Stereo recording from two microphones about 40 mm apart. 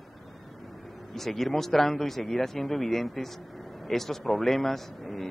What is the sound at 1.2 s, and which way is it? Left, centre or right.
A man's voice, centre.